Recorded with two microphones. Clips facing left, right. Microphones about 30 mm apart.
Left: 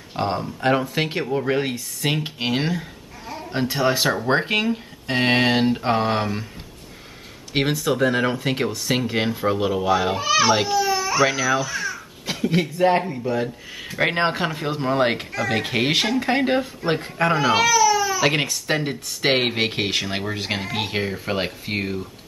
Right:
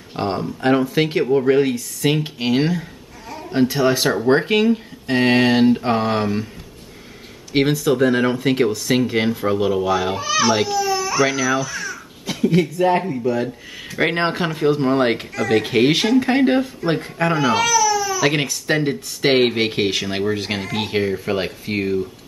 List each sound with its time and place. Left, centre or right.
0.1 s speech: centre
7.5 s speech: centre
18.2 s speech: centre